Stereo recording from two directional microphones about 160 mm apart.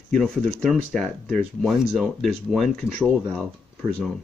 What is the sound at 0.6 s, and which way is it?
Speech, 5° left (ahead or behind).